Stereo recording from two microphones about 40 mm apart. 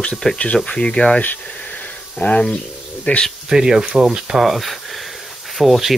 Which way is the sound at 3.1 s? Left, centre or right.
Left.